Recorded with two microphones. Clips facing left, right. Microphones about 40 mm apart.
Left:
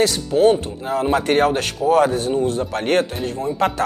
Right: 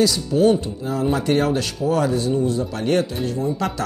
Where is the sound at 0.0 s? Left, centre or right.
Left.